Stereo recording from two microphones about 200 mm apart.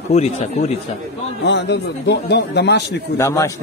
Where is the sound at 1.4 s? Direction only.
60° left (ahead or behind).